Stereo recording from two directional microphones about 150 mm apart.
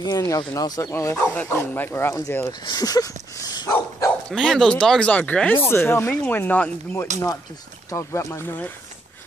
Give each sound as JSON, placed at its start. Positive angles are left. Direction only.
{"t": 0.0, "sound": "speech", "side_deg": 25}
{"t": 1.1, "sound": "speech", "side_deg": 10}
{"t": 2.6, "sound": "dog", "side_deg": 25}
{"t": 4.3, "sound": "speech", "side_deg": 5}
{"t": 7.9, "sound": "speech", "side_deg": 20}